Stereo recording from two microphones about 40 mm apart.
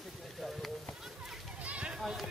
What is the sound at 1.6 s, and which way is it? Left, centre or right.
Run, right.